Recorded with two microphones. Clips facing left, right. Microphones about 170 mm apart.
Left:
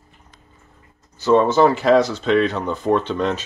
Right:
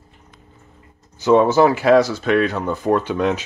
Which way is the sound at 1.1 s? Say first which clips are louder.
Right 1 dB; 15° right (ahead or behind).